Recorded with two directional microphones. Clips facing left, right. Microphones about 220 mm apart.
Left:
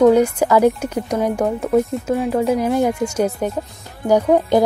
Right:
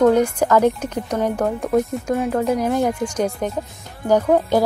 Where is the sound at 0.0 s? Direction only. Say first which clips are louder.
Left 2 dB; 10° left (ahead or behind).